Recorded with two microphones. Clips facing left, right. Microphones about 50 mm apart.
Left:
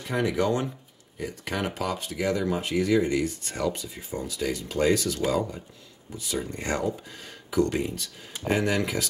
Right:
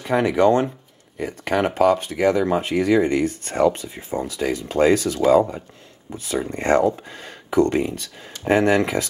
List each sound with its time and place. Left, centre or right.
0.0 s speech: right